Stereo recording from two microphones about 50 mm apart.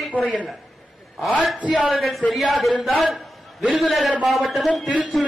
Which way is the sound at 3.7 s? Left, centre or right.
Centre.